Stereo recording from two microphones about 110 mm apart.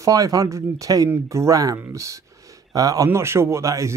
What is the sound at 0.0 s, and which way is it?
Speech, 30° right (ahead or behind).